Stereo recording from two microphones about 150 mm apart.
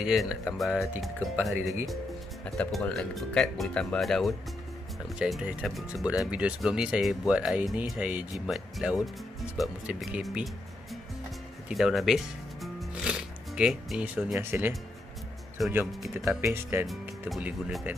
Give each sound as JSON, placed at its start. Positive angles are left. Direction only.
{"t": 0.0, "sound": "speech", "side_deg": 0}
{"t": 2.4, "sound": "speech", "side_deg": 5}
{"t": 15.9, "sound": "speech", "side_deg": 0}
{"t": 16.3, "sound": "speech", "side_deg": -15}